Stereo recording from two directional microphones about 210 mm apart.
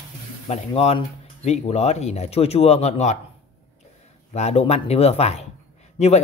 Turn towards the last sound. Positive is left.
turn(degrees=30)  # may be behind; listen again after turning